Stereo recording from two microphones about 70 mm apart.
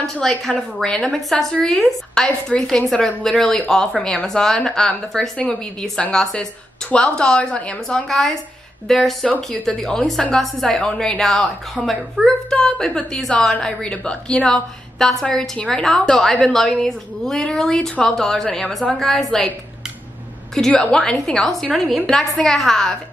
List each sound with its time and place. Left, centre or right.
0.0 s a woman's voice: centre
20.7 s a woman's voice: centre
21.0 s a woman's voice: centre